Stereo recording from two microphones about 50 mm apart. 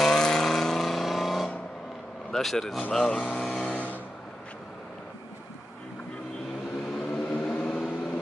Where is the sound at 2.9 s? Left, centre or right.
Centre.